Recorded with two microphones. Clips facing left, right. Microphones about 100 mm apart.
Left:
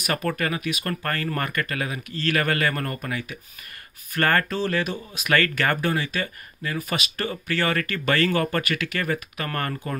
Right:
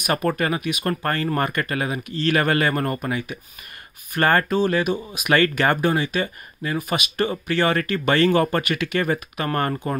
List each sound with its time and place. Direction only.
0.0 s speech: 20° right (ahead or behind)